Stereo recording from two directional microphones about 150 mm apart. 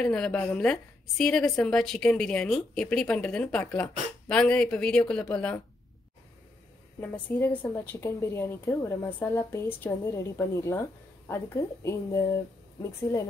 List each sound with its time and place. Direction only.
0.0 s a woman's voice: 5° left (ahead or behind)
7.0 s a woman's voice: 10° left (ahead or behind)